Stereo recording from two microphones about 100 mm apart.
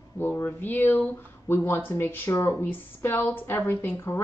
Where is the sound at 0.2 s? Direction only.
20° left (ahead or behind).